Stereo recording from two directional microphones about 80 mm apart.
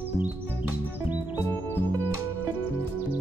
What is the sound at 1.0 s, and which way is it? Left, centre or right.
Music, right.